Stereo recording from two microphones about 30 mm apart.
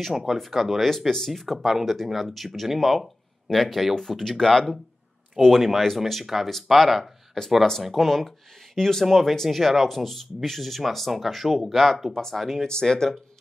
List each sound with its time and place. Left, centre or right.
0.5 s speech: centre
0.8 s speech: centre
1.6 s speech: centre
5.4 s speech: centre
7.0 s speech: centre
7.8 s speech: centre
8.7 s speech: centre
12.1 s speech: centre
12.6 s speech: left